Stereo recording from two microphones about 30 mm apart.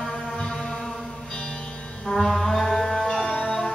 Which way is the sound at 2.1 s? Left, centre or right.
Centre.